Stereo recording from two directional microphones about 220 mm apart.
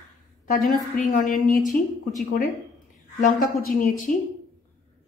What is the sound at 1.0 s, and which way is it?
Speech, 40° left (ahead or behind).